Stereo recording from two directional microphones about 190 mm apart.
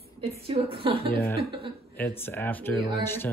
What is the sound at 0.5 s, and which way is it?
Speech, 30° right (ahead or behind).